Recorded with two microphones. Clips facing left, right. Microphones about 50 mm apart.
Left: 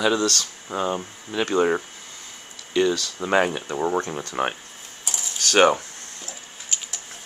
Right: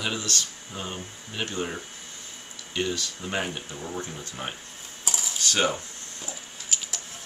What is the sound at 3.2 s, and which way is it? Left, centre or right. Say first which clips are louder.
Speech: left 13 dB; left.